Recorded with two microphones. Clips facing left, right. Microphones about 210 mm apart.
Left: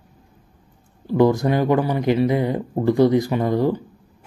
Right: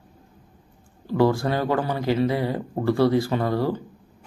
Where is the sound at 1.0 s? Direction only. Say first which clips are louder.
Left 4 dB; 15° left (ahead or behind).